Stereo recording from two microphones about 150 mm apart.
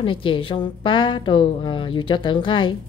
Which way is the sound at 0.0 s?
35° left (ahead or behind).